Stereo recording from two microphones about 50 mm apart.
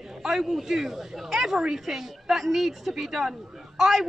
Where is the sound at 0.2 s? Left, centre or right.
Centre.